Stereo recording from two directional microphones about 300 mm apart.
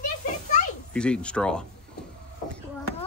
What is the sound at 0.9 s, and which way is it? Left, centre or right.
Speech, centre.